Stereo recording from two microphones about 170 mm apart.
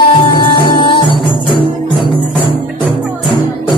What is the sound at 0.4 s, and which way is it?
Music, 30° left (ahead or behind).